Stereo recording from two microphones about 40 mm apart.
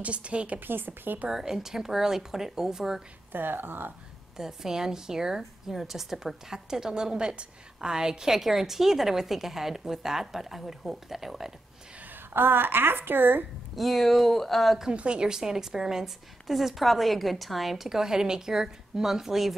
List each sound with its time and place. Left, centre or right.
0.0 s a woman's voice: right
0.6 s a woman's voice: right
1.3 s a woman's voice: centre
3.3 s a woman's voice: right
4.4 s a woman's voice: centre
12.4 s a woman's voice: right
13.7 s speech: centre
15.0 s a woman's voice: right; by 19.5 s centre